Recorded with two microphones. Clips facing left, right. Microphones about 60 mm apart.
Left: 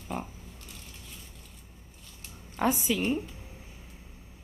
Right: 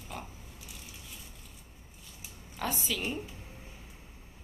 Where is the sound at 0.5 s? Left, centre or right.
Centre.